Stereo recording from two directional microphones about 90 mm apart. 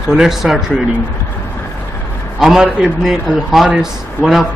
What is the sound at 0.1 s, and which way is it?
Speech, 5° right (ahead or behind).